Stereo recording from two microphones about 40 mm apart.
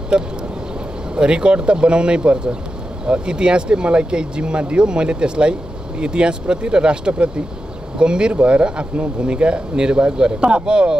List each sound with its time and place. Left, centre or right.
0.1 s speech: right